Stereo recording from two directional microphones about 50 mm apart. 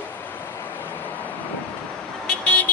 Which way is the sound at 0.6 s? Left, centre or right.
Left.